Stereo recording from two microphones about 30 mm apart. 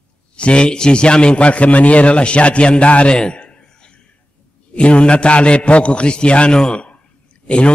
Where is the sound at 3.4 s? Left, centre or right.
Left.